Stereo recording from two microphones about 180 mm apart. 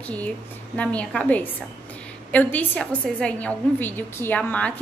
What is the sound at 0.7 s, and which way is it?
A woman's voice, 5° left (ahead or behind).